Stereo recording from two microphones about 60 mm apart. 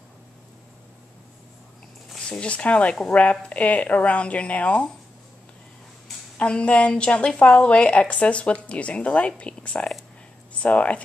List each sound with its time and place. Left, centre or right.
2.1 s a woman's voice: centre
6.3 s a woman's voice: centre